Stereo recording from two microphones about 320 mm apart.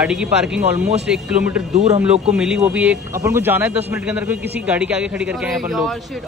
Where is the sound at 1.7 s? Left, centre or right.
Right.